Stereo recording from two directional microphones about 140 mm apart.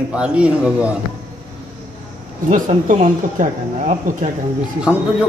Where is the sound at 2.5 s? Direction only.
65° right (ahead or behind).